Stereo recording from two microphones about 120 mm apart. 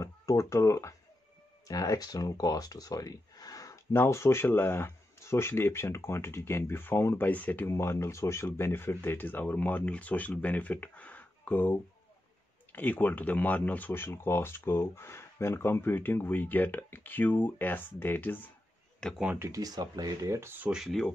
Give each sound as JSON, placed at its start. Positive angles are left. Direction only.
{"t": 0.0, "sound": "speech", "side_deg": 25}
{"t": 18.9, "sound": "speech", "side_deg": 5}
{"t": 19.2, "sound": "speech", "side_deg": -20}
{"t": 20.8, "sound": "speech", "side_deg": 0}